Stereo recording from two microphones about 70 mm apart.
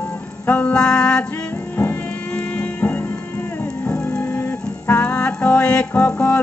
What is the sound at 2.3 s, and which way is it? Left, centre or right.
Music, left.